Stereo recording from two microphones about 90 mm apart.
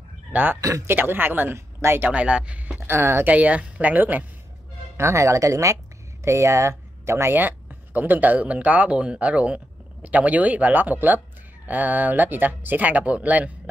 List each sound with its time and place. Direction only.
0.3 s speech: 20° right (ahead or behind)
0.6 s speech: 40° right (ahead or behind)
0.8 s speech: 25° right (ahead or behind)
2.0 s speech: 15° right (ahead or behind)
3.3 s speech: 15° right (ahead or behind)
4.9 s speech: 30° right (ahead or behind); by 13.5 s 15° right (ahead or behind)